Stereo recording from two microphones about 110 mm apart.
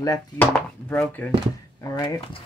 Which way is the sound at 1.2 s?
15° left (ahead or behind).